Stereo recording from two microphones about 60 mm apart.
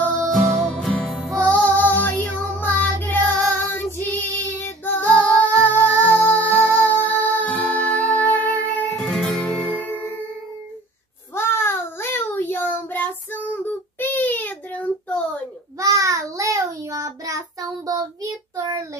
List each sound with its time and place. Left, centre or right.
0.6 s music: centre
0.9 s music: centre
1.3 s child singing: left
5.4 s music: left
9.0 s music: centre
9.7 s music: left
11.3 s child singing: left
15.8 s child singing: right